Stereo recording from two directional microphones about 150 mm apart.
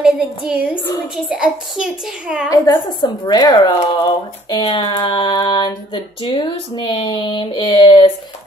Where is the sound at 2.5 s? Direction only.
25° left (ahead or behind).